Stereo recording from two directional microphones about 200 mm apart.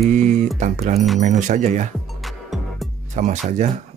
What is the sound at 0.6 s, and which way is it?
Speech, 35° right (ahead or behind).